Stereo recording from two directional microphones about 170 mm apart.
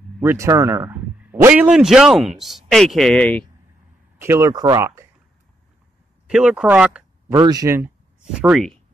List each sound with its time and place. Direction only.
0.2 s a man's voice: 15° right (ahead or behind); by 3.4 s 10° left (ahead or behind)
4.2 s speech: 15° right (ahead or behind)
6.2 s speech: 5° right (ahead or behind)
7.3 s speech: 20° right (ahead or behind)
8.2 s speech: 5° right (ahead or behind)